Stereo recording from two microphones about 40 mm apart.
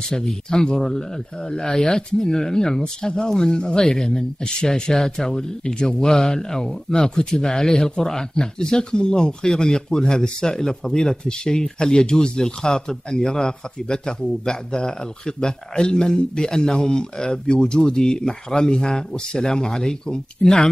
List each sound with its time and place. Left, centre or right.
0.1 s speech: centre